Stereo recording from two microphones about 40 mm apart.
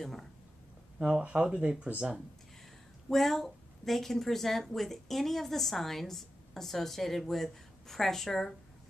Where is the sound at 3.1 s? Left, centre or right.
Centre.